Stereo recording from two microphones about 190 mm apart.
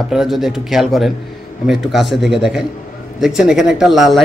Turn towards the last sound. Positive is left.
turn(degrees=0)  # may be behind; listen again after turning